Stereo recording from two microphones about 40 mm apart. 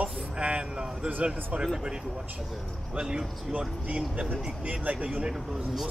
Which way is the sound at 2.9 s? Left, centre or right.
Centre.